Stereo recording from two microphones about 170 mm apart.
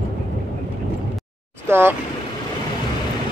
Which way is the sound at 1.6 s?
15° right (ahead or behind).